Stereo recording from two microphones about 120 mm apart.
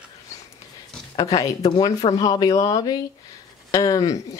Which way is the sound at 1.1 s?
30° left (ahead or behind).